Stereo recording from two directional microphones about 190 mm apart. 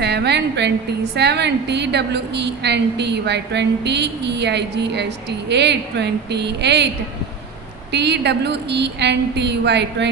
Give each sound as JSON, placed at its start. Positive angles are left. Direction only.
{"t": 0.0, "sound": "a woman's voice", "side_deg": -60}
{"t": 7.9, "sound": "a woman's voice", "side_deg": -65}